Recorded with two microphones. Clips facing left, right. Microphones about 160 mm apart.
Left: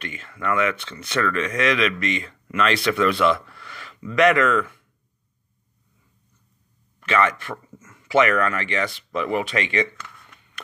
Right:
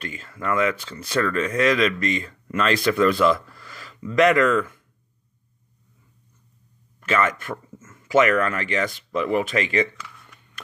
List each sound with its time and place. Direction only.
0.0 s speech: 35° right (ahead or behind)
7.1 s speech: 45° right (ahead or behind)
9.9 s a sound: centre (ahead or behind)